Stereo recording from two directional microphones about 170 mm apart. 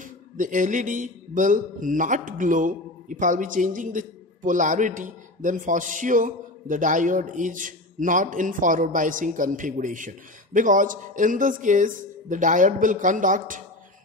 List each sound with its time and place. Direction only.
0.0 s a man's voice: 50° right (ahead or behind)